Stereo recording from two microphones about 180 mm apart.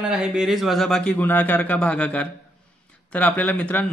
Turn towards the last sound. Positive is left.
turn(degrees=10)  # may be behind; listen again after turning